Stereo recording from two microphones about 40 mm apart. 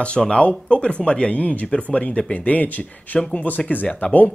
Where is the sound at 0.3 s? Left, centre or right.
Left.